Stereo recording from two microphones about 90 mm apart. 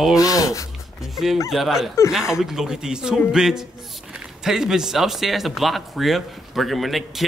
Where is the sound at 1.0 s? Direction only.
Centre (ahead or behind).